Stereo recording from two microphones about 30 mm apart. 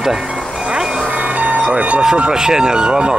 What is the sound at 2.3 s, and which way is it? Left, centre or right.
Speech, right.